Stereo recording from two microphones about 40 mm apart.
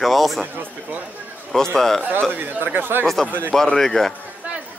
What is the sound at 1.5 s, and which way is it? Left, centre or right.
Speech, centre.